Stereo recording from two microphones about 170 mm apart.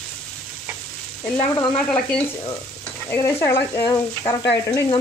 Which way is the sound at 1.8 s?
5° left (ahead or behind).